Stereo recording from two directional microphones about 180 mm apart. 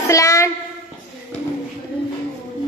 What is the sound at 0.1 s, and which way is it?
Speech, 15° left (ahead or behind).